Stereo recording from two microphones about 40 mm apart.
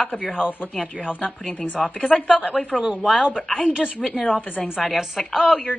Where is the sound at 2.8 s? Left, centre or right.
Centre.